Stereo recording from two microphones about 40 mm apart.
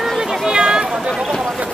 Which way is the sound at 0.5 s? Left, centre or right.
Centre.